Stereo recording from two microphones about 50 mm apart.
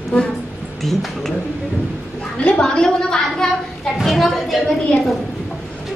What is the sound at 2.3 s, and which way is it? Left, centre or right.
Speech, left.